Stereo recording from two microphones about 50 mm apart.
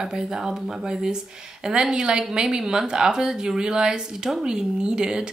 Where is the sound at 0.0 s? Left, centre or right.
Centre.